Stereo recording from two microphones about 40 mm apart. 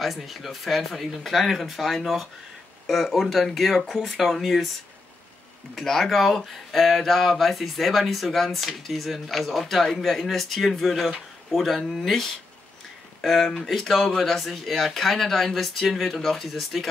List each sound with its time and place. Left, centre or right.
0.0 s speech: centre
5.9 s speech: centre